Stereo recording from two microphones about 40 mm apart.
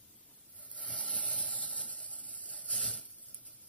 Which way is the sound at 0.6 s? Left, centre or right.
Left.